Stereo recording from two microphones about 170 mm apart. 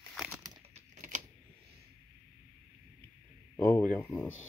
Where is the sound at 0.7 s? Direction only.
45° right (ahead or behind).